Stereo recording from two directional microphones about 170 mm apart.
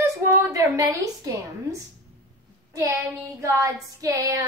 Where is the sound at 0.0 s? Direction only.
20° right (ahead or behind).